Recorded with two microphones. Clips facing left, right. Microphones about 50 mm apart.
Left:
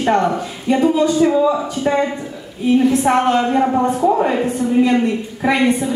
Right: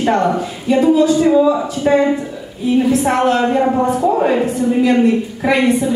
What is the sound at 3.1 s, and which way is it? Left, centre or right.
Speech, centre.